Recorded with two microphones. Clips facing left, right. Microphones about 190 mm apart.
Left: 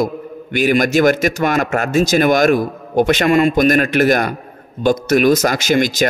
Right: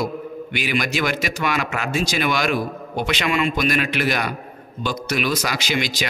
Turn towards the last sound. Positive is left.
turn(degrees=45)  # may be behind; listen again after turning